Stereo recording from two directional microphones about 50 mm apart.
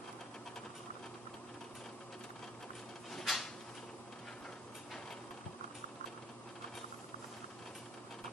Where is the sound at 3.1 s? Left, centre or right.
Centre.